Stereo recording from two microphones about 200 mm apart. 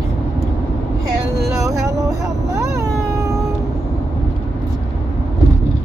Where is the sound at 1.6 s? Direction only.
15° right (ahead or behind).